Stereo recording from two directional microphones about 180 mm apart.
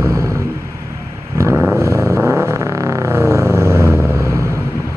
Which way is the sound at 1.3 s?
15° right (ahead or behind).